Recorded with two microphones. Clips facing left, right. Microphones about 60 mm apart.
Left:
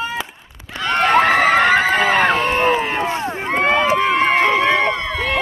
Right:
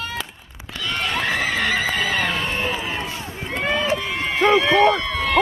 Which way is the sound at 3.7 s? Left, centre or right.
Left.